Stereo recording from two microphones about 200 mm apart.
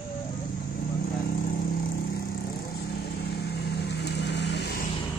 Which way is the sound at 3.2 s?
55° left (ahead or behind).